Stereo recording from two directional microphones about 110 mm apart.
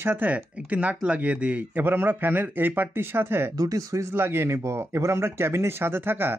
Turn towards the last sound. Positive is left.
turn(degrees=-20)  # may be behind; listen again after turning